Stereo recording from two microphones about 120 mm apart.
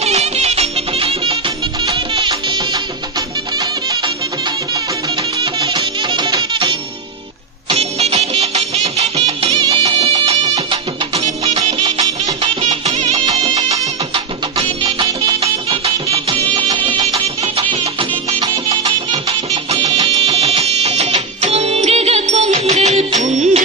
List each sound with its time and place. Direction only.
0.0 s music: 65° right (ahead or behind); by 4.1 s 35° right (ahead or behind)
5.4 s music: 45° right (ahead or behind)
7.7 s music: 60° right (ahead or behind)
9.5 s music: 45° right (ahead or behind)
12.4 s music: 60° right (ahead or behind)
14.8 s music: 45° right (ahead or behind)
18.7 s music: 55° right (ahead or behind); by 23.6 s 80° right